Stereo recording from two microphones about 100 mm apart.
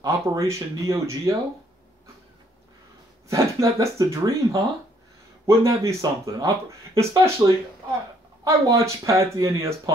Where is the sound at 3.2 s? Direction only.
30° right (ahead or behind).